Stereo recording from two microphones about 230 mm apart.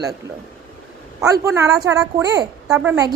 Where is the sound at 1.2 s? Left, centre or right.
Centre.